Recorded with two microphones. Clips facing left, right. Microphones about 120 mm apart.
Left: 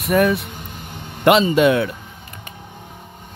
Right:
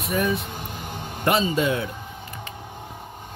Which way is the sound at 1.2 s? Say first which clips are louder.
Left 8 dB; 90° left.